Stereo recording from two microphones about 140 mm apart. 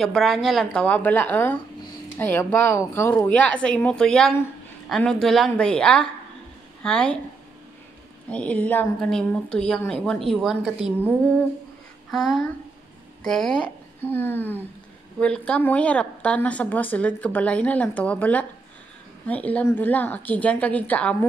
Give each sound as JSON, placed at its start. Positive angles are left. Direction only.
{"t": 0.0, "sound": "a woman's voice", "side_deg": 0}
{"t": 8.3, "sound": "a woman's voice", "side_deg": 10}
{"t": 12.1, "sound": "a woman's voice", "side_deg": 0}